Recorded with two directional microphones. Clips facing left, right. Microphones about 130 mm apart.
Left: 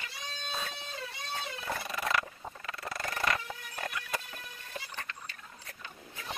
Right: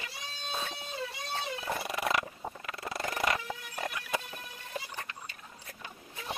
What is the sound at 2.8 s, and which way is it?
Music, 25° right (ahead or behind).